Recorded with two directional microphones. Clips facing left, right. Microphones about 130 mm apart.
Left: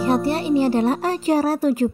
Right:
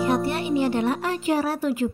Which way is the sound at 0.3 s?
35° left (ahead or behind).